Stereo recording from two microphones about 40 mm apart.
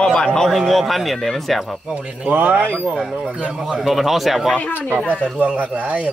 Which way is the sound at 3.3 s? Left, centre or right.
Right.